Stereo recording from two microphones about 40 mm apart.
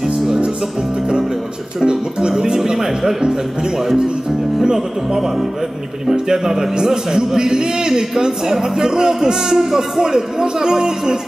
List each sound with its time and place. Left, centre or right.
1.8 s speech: centre